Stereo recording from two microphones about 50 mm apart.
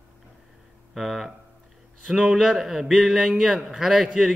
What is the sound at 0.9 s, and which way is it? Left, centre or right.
Speech, centre.